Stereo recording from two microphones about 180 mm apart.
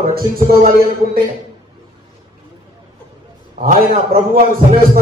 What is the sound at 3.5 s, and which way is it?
Speech, 50° right (ahead or behind).